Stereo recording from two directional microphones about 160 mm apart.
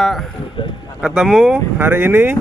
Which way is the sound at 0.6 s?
30° left (ahead or behind).